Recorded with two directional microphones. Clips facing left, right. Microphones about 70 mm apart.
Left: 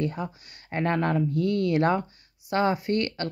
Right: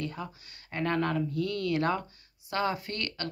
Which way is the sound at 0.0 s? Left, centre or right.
Left.